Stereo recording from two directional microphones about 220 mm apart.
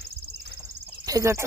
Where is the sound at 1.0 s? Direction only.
15° right (ahead or behind).